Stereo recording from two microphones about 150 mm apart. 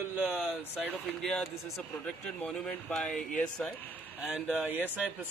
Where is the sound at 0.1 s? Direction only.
5° right (ahead or behind).